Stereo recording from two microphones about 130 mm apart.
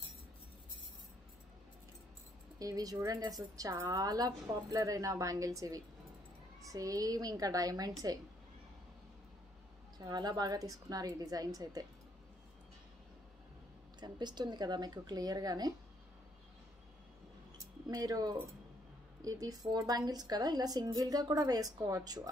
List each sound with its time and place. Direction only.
2.6 s a woman's voice: 30° right (ahead or behind)
9.9 s a woman's voice: 30° right (ahead or behind)
13.9 s speech: 35° right (ahead or behind)
17.8 s a woman's voice: 30° right (ahead or behind)